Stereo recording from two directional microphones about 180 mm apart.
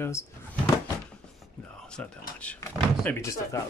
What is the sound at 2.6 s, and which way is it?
Speech, 15° left (ahead or behind).